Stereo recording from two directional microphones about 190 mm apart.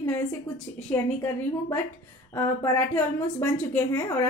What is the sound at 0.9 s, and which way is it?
Speech, 10° left (ahead or behind).